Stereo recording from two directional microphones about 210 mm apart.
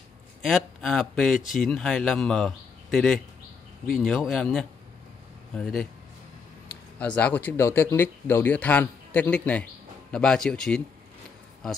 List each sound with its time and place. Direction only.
0.4 s speech: centre (ahead or behind)
7.0 s speech: 5° left (ahead or behind)